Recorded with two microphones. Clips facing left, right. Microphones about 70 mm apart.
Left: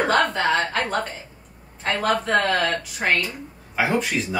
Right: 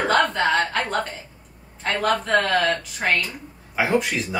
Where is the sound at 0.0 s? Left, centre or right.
Centre.